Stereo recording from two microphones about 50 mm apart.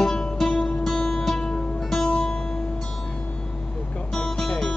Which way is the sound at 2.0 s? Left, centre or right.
Left.